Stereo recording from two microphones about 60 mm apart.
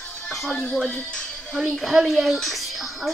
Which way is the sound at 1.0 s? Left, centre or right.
Centre.